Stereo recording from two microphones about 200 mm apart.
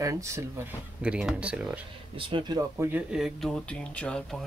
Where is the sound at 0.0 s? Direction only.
15° right (ahead or behind).